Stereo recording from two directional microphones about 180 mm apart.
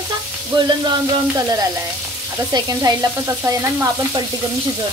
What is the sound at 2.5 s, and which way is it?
Frying, 20° right (ahead or behind).